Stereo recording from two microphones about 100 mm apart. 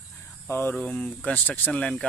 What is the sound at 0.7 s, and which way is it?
Speech, 10° left (ahead or behind).